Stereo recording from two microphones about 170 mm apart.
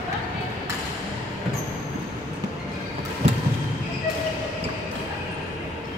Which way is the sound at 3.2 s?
35° right (ahead or behind).